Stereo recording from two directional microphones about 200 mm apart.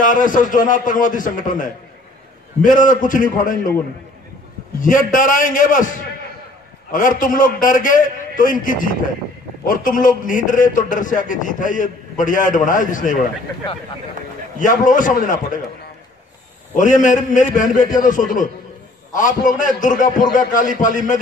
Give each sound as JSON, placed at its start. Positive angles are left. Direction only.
{"t": 0.0, "sound": "a man's voice", "side_deg": 40}
{"t": 4.8, "sound": "a man's voice", "side_deg": 40}
{"t": 6.9, "sound": "a man's voice", "side_deg": 40}
{"t": 14.6, "sound": "a man's voice", "side_deg": 40}
{"t": 16.7, "sound": "a man's voice", "side_deg": 40}